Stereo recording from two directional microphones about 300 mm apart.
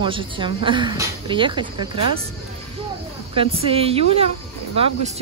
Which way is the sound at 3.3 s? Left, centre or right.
Centre.